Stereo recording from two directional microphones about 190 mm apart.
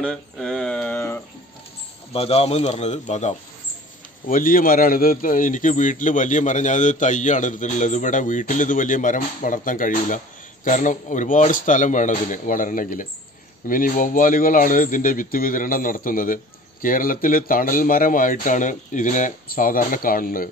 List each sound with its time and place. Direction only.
0.0 s a sound: 5° left (ahead or behind)
2.1 s speech: 30° left (ahead or behind)
4.3 s a man's voice: 45° left (ahead or behind)